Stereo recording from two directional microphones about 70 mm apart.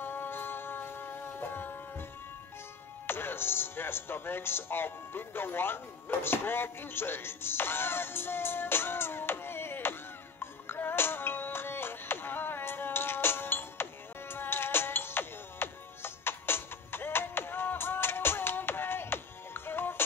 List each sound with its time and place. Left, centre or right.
0.0 s music: left
3.1 s speech: left
10.4 s music: left